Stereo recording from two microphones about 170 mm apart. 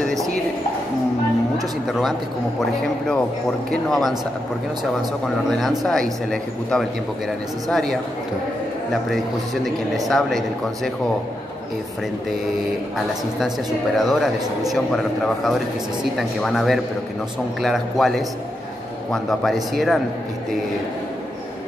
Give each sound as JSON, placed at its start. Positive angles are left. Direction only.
{"t": 1.9, "sound": "speech", "side_deg": 0}
{"t": 5.5, "sound": "speech", "side_deg": 0}
{"t": 9.1, "sound": "speech", "side_deg": 0}
{"t": 13.9, "sound": "speech", "side_deg": 0}